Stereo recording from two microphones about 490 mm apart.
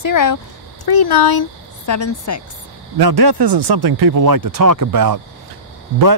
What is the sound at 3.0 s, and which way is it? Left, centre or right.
Speech, right.